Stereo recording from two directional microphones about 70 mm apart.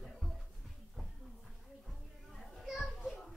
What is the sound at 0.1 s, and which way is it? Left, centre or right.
Music, centre.